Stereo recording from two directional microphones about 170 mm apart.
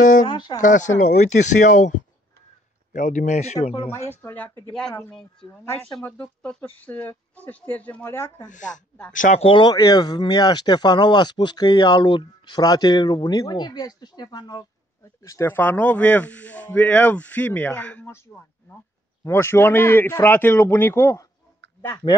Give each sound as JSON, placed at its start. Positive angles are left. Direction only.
{"t": 0.3, "sound": "speech", "side_deg": 25}
{"t": 0.6, "sound": "speech", "side_deg": 50}
{"t": 4.1, "sound": "speech", "side_deg": 10}
{"t": 8.5, "sound": "speech", "side_deg": 45}
{"t": 9.4, "sound": "speech", "side_deg": 30}